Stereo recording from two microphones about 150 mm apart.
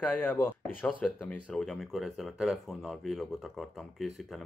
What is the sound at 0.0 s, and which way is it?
Speech, 10° left (ahead or behind).